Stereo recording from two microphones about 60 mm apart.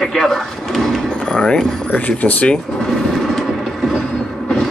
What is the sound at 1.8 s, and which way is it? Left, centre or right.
Speech, left.